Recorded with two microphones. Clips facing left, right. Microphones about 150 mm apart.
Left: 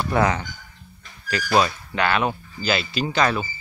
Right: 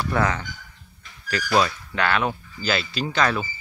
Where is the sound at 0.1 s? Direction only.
15° left (ahead or behind).